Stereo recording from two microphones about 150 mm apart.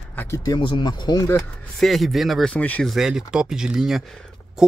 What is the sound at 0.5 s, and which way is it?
Speech, 30° left (ahead or behind).